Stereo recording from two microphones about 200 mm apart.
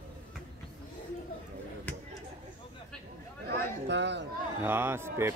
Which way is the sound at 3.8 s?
60° right (ahead or behind).